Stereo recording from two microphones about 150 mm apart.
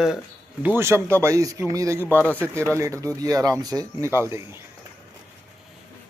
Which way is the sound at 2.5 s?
20° right (ahead or behind).